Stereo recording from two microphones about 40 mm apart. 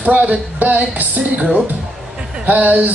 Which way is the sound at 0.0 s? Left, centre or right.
Right.